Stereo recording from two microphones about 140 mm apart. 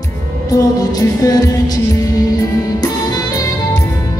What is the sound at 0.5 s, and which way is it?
Music, 25° left (ahead or behind).